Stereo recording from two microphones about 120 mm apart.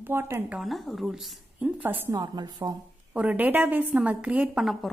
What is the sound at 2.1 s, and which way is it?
Speech, 35° right (ahead or behind).